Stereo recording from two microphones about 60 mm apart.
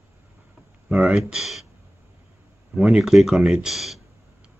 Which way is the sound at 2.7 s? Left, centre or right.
Centre.